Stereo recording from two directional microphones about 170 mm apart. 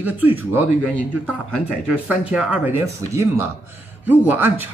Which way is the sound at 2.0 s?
10° right (ahead or behind).